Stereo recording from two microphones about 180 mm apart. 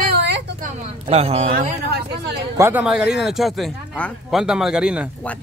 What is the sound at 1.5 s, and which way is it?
Speech, 60° right (ahead or behind).